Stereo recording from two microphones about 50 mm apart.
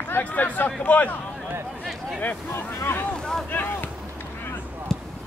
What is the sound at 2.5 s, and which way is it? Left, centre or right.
Speech, left.